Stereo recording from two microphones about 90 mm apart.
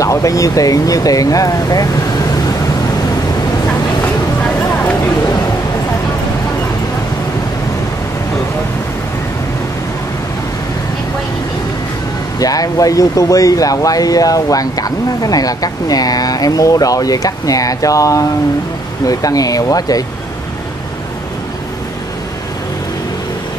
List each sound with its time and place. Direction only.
0.0 s speech: 40° left (ahead or behind)
12.4 s speech: 40° left (ahead or behind)